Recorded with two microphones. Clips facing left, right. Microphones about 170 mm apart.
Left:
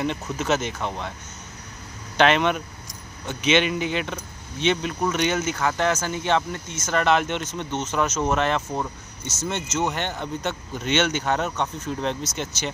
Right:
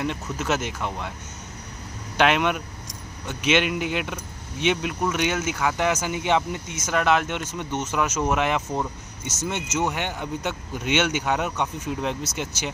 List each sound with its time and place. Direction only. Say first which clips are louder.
0.0 s speech: left 1 dB; centre (ahead or behind)
2.1 s speech: left 2 dB; 5° right (ahead or behind)